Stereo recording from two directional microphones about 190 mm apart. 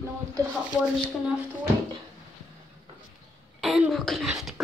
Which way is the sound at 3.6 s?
Centre (ahead or behind).